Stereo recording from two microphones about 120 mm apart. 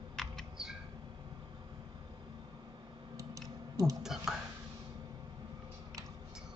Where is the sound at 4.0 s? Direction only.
5° right (ahead or behind).